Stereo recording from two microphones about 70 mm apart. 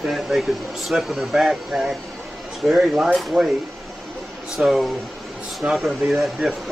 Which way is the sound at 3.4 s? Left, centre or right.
Right.